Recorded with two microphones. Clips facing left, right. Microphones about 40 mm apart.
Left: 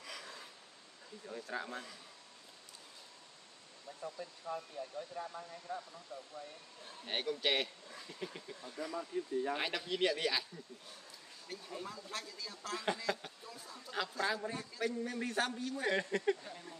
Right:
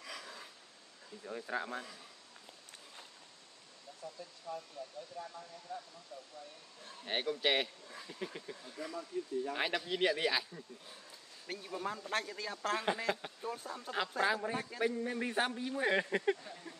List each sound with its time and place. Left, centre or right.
0.0 s a sound: centre
1.2 s a man's voice: centre
4.0 s speech: left
5.7 s speech: left
6.8 s speech: centre
9.1 s speech: left
9.6 s a man's voice: centre
11.4 s speech: right
12.9 s a man's voice: right
13.4 s speech: right
14.2 s a man's voice: right